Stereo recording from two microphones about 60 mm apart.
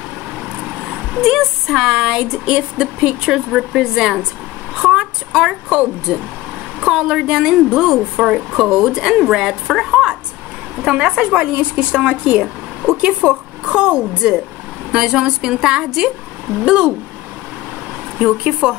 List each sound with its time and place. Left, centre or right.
0.8 s speech: centre
4.8 s a sound: centre
5.7 s speech: centre
18.2 s speech: centre